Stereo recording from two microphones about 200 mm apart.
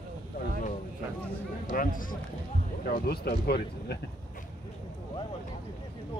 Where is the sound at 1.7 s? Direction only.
45° left (ahead or behind).